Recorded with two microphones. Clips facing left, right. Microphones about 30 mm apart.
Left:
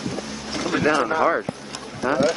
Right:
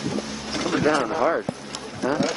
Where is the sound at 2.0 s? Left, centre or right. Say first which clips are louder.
Left 2 dB; left.